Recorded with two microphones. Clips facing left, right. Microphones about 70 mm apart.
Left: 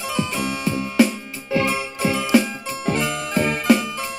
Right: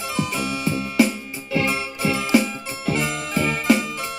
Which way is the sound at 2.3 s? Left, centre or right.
Left.